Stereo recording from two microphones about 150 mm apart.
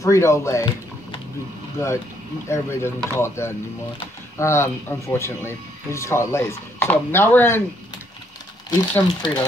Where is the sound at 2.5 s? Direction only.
15° left (ahead or behind).